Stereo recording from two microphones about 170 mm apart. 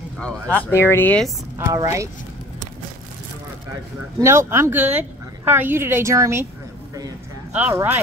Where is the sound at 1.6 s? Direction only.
20° right (ahead or behind).